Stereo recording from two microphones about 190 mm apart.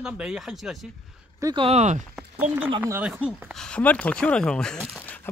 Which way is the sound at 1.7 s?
35° right (ahead or behind).